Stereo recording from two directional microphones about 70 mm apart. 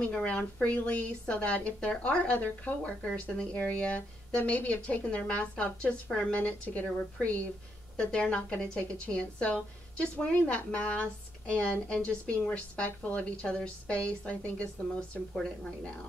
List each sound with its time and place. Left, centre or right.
0.0 s a woman's voice: centre